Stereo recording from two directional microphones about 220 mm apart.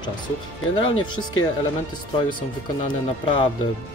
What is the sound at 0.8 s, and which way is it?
Speech, 20° left (ahead or behind).